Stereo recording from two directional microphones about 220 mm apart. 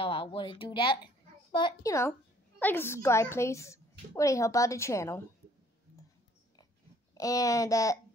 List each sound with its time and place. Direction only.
0.0 s a child's voice: 25° left (ahead or behind)
7.2 s a woman's voice: 15° left (ahead or behind)